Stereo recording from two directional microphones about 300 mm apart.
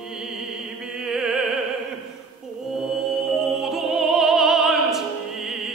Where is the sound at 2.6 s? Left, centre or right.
Centre.